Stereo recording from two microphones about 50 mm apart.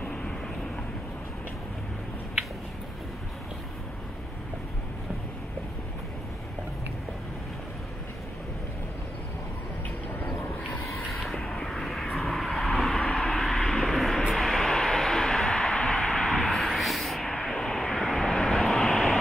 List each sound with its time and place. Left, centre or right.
0.0 s vehicle: centre
10.9 s a sound: centre
11.4 s vehicle: centre
13.0 s vehicle: centre
13.3 s vehicle: centre
13.9 s vehicle: centre
16.5 s vehicle: centre